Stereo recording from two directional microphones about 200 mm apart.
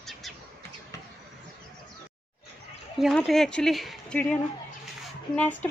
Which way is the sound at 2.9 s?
Centre (ahead or behind).